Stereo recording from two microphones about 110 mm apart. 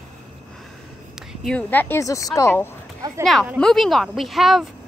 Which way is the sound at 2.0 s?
30° left (ahead or behind).